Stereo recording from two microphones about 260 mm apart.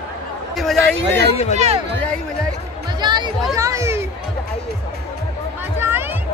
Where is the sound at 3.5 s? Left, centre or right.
Centre.